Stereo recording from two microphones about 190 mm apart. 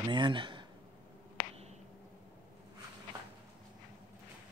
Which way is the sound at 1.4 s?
45° left (ahead or behind).